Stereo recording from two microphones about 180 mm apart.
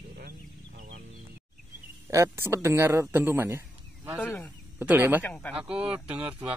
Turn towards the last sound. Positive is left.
turn(degrees=-10)  # may be behind; listen again after turning